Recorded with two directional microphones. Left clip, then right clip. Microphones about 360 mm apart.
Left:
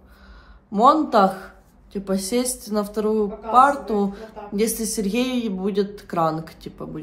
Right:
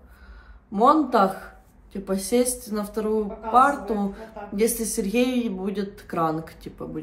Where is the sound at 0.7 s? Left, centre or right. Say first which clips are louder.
Left 2 dB; centre.